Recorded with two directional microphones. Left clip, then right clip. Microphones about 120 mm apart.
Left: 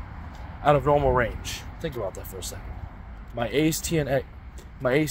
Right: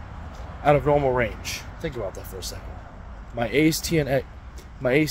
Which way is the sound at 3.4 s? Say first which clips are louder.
Right 3 dB; 25° right (ahead or behind).